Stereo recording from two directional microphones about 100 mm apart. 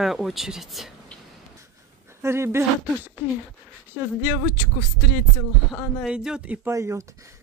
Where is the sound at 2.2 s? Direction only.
25° right (ahead or behind).